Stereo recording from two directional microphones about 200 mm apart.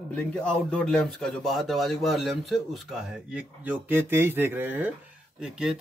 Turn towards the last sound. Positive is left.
turn(degrees=-5)  # may be behind; listen again after turning